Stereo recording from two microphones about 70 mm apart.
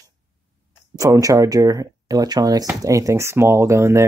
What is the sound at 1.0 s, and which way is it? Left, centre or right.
Speech, right.